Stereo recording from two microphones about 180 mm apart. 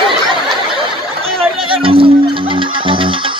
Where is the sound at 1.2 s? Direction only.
30° right (ahead or behind).